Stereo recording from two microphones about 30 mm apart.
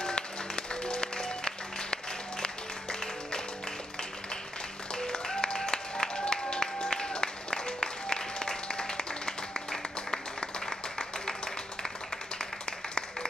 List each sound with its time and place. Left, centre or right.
0.0 s music: left
4.9 s applause: centre